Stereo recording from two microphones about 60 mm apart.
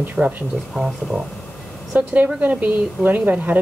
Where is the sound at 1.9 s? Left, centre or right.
Right.